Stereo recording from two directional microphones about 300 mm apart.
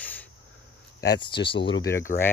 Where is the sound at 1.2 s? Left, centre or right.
Centre.